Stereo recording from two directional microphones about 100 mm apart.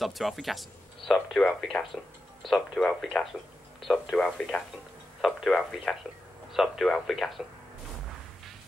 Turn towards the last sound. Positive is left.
turn(degrees=0)  # may be behind; listen again after turning